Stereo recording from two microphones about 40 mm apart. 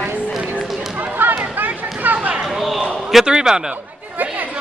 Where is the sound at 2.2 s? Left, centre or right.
Right.